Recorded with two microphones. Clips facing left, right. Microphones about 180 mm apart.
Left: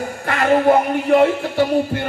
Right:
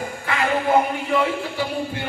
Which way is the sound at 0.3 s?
45° left (ahead or behind).